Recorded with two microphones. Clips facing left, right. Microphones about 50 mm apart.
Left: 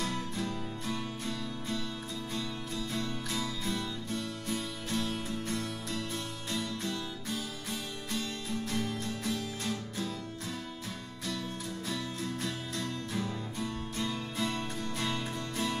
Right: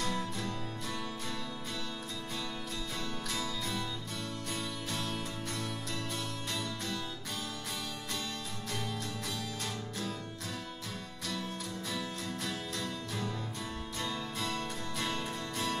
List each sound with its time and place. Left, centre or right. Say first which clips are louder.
0.4 s music: left 2 dB; centre
4.5 s music: left 3 dB; centre
6.8 s music: left 2 dB; centre
12.7 s music: left 2 dB; centre